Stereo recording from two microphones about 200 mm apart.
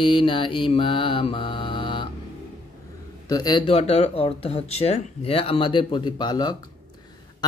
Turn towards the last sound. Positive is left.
turn(degrees=20)  # may be behind; listen again after turning